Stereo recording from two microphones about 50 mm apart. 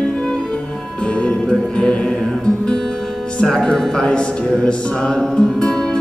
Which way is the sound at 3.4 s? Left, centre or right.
Centre.